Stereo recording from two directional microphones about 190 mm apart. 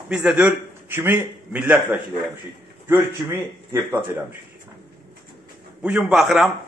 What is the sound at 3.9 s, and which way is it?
Speech, 10° right (ahead or behind).